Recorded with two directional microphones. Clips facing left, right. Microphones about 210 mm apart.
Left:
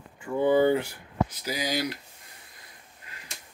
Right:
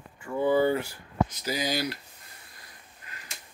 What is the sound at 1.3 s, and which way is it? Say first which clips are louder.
Speech: even; 10° left (ahead or behind).